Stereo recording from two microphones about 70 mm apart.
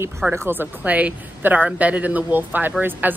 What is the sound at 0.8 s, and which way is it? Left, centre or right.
A woman's voice, right.